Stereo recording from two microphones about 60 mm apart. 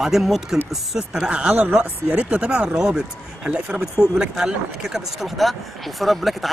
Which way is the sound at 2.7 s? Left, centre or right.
Centre.